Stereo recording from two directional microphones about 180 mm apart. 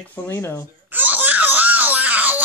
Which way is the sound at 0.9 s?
10° right (ahead or behind).